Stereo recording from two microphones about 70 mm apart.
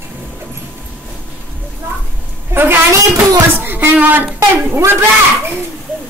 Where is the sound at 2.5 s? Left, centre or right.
Right.